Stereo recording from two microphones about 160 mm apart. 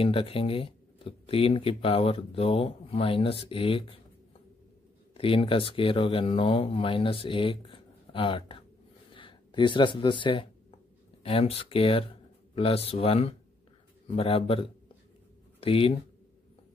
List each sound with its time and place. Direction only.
0.0 s speech: 35° left (ahead or behind)
5.1 s speech: 35° left (ahead or behind)